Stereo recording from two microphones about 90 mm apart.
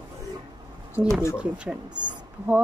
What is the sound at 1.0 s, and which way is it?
Speech, 50° right (ahead or behind).